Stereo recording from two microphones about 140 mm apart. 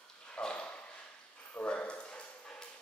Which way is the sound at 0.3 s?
5° left (ahead or behind).